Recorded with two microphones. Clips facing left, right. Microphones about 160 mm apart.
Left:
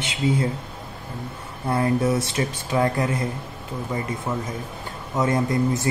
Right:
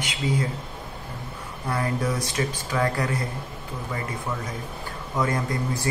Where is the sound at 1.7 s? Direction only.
25° left (ahead or behind).